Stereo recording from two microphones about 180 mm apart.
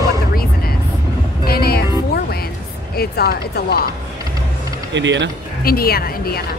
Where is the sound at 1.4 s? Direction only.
60° left (ahead or behind).